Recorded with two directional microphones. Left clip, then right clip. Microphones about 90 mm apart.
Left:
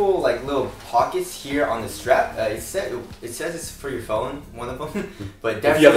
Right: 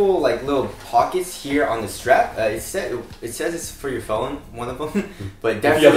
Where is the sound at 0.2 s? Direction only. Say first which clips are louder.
Right 2 dB; 5° right (ahead or behind).